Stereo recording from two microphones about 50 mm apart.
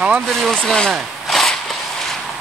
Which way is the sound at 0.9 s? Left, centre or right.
Centre.